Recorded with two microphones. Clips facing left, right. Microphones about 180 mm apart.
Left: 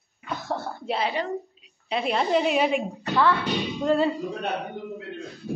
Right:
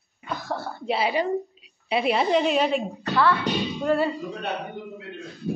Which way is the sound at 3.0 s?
15° left (ahead or behind).